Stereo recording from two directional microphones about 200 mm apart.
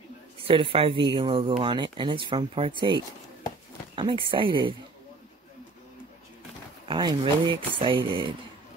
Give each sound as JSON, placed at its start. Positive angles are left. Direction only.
{"t": 0.4, "sound": "speech", "side_deg": -25}
{"t": 3.9, "sound": "speech", "side_deg": -25}
{"t": 6.9, "sound": "speech", "side_deg": -20}